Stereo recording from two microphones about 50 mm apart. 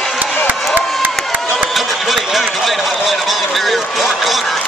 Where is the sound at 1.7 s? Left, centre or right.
Centre.